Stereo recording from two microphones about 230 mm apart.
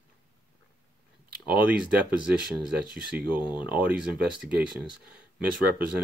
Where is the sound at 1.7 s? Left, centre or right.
Centre.